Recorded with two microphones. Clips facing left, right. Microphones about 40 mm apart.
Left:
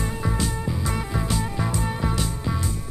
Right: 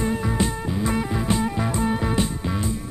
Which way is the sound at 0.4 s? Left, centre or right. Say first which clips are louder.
Right 3 dB; right.